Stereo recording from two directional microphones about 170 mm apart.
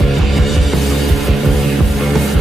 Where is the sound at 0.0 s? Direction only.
Centre (ahead or behind).